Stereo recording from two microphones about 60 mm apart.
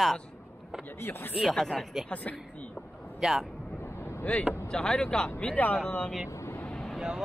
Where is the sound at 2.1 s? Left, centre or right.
Left.